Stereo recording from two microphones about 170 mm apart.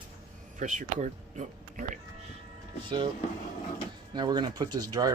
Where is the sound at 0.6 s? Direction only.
45° right (ahead or behind).